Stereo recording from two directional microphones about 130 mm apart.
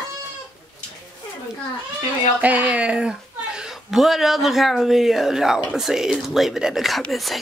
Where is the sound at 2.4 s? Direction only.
10° right (ahead or behind).